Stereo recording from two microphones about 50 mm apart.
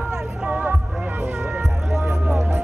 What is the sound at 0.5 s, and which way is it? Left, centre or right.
Music, right.